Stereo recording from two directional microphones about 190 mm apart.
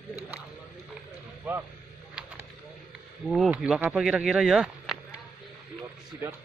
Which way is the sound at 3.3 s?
Centre (ahead or behind).